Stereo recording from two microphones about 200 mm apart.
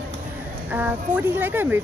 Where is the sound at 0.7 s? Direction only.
10° right (ahead or behind).